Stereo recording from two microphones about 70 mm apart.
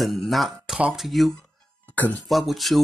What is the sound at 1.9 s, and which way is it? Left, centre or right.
Speech, left.